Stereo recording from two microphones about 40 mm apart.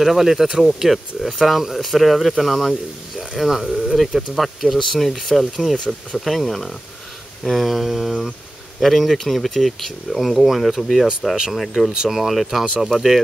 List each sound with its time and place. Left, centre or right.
0.0 s speech: centre
11.9 s speech: centre